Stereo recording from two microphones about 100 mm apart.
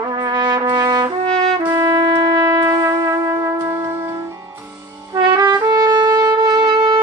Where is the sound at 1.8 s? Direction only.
40° right (ahead or behind).